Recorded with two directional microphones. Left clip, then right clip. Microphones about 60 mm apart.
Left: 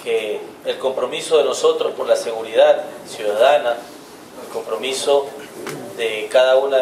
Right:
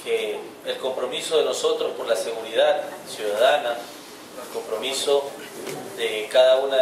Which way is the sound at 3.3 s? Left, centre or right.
Left.